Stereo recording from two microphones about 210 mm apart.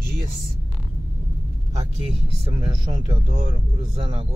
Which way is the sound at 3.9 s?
25° right (ahead or behind).